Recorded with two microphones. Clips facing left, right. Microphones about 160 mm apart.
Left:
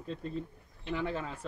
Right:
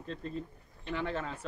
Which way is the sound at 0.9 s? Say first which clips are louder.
Left 1 dB; 10° left (ahead or behind).